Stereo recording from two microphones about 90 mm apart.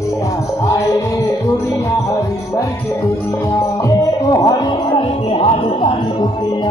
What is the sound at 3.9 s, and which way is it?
Music, 45° left (ahead or behind).